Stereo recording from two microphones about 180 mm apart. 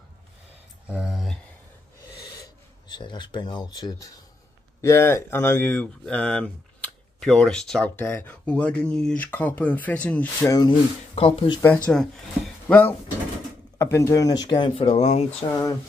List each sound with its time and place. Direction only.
0.8 s speech: 5° right (ahead or behind)
2.9 s speech: 25° left (ahead or behind); by 10.5 s 10° left (ahead or behind)
10.5 s speech: 20° left (ahead or behind)
11.6 s speech: 5° left (ahead or behind)
13.9 s speech: 15° left (ahead or behind); by 15.2 s 40° left (ahead or behind)
15.5 s speech: 20° left (ahead or behind)